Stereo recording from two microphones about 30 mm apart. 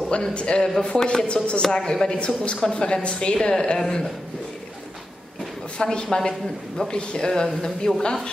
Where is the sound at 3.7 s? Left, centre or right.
Left.